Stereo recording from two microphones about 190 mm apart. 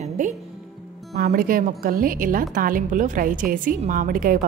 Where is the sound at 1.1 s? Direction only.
55° right (ahead or behind).